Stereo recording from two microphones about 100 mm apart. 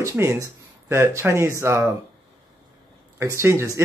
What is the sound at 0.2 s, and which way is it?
Speech, 30° right (ahead or behind).